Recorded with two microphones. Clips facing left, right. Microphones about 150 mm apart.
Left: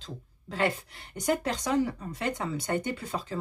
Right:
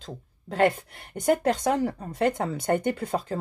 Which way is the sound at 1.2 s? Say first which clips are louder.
Right 6 dB; 55° right (ahead or behind).